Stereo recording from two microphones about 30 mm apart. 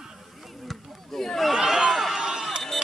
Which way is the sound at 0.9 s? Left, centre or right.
Centre.